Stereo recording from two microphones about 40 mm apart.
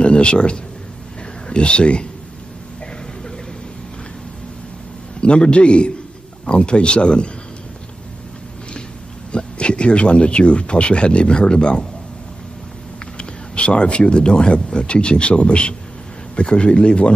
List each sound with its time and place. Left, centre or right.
0.0 s speech: left
5.2 s speech: left
9.3 s speech: left
13.2 s speech: left